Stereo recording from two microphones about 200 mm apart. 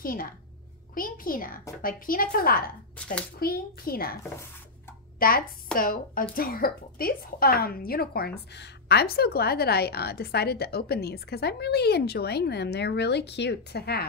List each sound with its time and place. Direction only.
0.0 s a woman's voice: 45° left (ahead or behind)
5.2 s a woman's voice: 45° left (ahead or behind)